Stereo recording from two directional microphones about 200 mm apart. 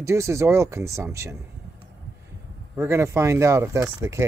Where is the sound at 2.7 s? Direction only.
10° right (ahead or behind).